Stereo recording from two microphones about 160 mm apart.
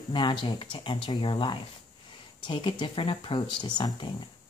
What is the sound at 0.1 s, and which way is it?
Speech, 30° left (ahead or behind).